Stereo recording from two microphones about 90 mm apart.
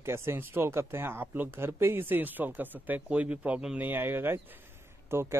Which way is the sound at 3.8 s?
20° right (ahead or behind).